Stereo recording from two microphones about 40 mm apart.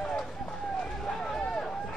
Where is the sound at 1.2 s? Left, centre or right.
Centre.